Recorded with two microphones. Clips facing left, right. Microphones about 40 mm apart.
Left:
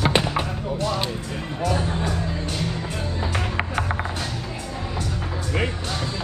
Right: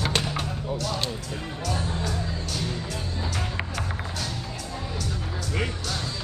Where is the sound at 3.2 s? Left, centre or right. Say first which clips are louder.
Left 6 dB; left.